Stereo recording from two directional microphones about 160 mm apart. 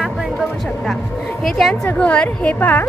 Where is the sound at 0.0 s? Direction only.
Centre (ahead or behind).